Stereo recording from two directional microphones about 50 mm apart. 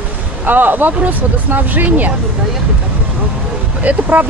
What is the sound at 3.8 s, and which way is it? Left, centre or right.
Speech, right.